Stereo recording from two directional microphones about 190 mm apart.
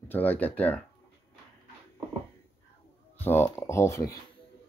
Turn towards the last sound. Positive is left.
turn(degrees=15)  # may be behind; listen again after turning